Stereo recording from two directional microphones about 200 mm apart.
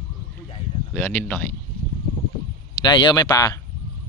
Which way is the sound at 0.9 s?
10° left (ahead or behind).